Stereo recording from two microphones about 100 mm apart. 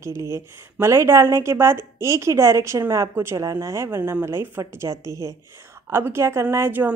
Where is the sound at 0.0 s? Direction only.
30° right (ahead or behind).